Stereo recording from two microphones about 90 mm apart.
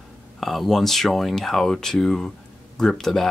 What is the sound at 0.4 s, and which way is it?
Speech, centre (ahead or behind).